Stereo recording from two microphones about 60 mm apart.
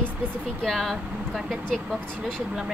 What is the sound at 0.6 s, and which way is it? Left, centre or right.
Speech, centre.